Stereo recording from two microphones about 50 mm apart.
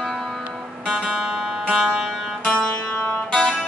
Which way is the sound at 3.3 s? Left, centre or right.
Centre.